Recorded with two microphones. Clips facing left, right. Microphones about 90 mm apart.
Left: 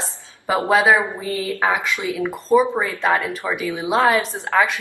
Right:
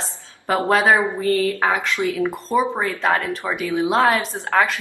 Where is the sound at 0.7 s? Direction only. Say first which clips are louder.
Left 1 dB; 5° left (ahead or behind).